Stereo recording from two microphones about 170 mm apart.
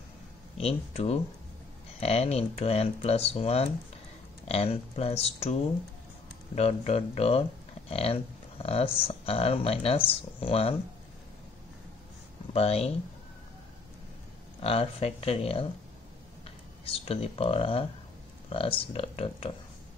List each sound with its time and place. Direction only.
0.6 s speech: 35° left (ahead or behind)
12.5 s speech: 35° left (ahead or behind)
14.6 s speech: 35° left (ahead or behind)